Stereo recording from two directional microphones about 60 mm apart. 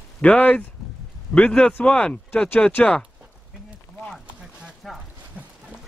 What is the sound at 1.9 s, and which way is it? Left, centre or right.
Speech, centre.